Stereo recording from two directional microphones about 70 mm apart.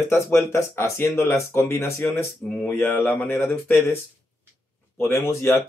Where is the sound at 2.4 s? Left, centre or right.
Left.